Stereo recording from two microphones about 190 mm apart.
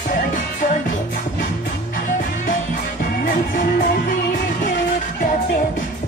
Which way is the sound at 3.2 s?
45° left (ahead or behind).